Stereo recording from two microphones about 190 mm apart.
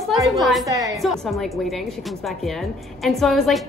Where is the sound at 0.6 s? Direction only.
15° right (ahead or behind).